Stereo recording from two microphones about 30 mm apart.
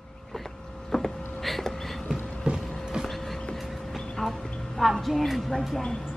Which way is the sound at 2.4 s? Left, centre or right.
Right.